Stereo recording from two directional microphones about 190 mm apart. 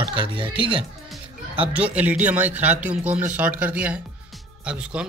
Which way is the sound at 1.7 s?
5° right (ahead or behind).